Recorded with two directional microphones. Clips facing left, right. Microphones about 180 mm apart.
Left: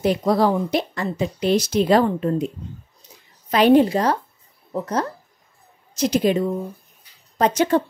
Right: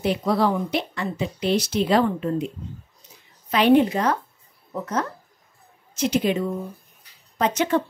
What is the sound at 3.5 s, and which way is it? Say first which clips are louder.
A woman's voice: left 3 dB; 40° left (ahead or behind).